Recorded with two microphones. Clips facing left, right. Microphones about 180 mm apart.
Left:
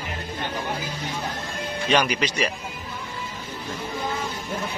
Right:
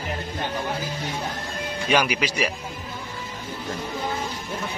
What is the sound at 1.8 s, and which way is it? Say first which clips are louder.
Speech: even; 10° right (ahead or behind).